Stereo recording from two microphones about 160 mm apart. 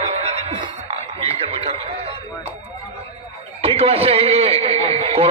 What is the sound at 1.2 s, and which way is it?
Radio, 35° right (ahead or behind).